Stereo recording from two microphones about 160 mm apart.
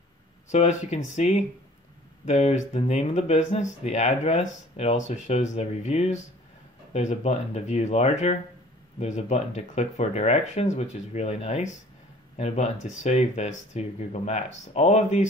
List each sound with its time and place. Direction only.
0.5 s speech: 45° left (ahead or behind)